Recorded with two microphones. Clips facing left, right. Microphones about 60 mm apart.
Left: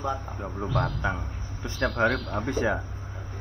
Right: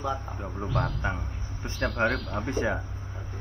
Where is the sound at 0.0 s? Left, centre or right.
Centre.